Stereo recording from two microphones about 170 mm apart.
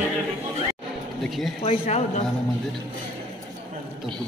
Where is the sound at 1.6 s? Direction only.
40° left (ahead or behind).